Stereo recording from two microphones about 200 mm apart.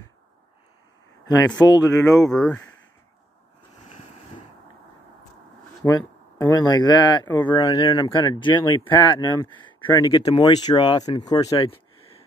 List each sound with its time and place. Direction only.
1.2 s speech: 20° left (ahead or behind)
2.1 s speech: centre (ahead or behind)
5.9 s speech: 15° left (ahead or behind)